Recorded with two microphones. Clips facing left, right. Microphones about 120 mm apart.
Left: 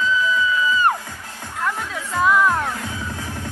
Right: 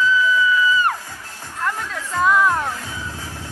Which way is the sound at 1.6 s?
Centre (ahead or behind).